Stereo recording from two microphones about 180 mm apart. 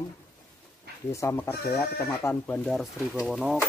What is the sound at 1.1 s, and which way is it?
Speech, 15° left (ahead or behind).